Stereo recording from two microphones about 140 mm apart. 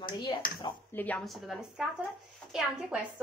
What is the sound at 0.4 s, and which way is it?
Speech, 85° left.